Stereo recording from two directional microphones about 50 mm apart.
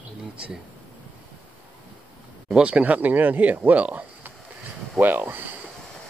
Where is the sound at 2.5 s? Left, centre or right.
Right.